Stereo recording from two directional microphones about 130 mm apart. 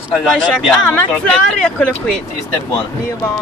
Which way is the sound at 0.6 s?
10° left (ahead or behind).